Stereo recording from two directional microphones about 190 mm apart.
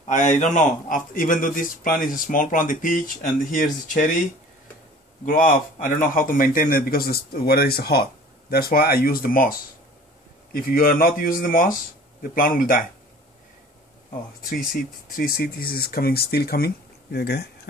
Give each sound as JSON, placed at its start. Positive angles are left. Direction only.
{"t": 0.0, "sound": "a man's voice", "side_deg": 40}
{"t": 5.2, "sound": "a man's voice", "side_deg": 50}
{"t": 14.5, "sound": "a man's voice", "side_deg": 50}